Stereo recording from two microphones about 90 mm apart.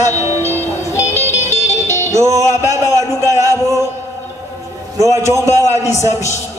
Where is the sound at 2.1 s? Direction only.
35° right (ahead or behind).